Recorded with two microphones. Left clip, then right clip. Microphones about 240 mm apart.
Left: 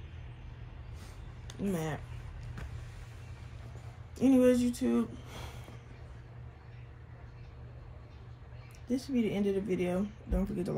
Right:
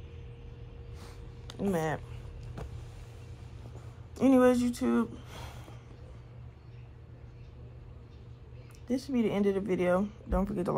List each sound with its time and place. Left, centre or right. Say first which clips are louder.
1.7 s speech: right 6 dB; centre
2.4 s vehicle: right 4 dB; centre
4.1 s speech: right 2 dB; centre
8.8 s speech: right 2 dB; centre
9.1 s speech: right 3 dB; right
9.4 s speech: right 3 dB; centre
9.7 s speech: right 5 dB; right
9.9 s speech: right 5 dB; centre